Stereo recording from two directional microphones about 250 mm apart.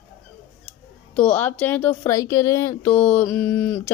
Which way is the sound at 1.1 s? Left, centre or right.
Centre.